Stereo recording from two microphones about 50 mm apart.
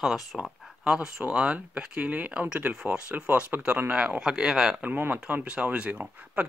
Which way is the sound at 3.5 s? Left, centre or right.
Right.